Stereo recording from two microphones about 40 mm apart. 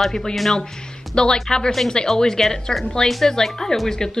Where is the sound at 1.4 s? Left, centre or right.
Centre.